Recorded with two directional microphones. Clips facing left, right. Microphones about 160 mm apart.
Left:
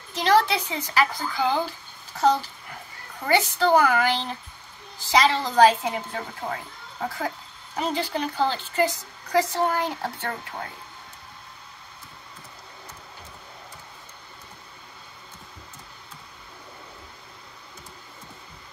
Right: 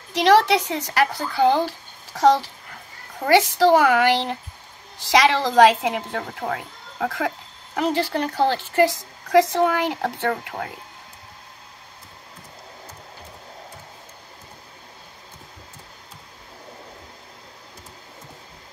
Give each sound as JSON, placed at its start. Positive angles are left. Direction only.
{"t": 0.1, "sound": "speech", "side_deg": -80}
{"t": 5.1, "sound": "speech", "side_deg": -85}